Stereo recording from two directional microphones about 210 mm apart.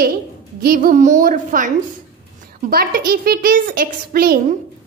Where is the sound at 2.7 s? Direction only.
45° right (ahead or behind).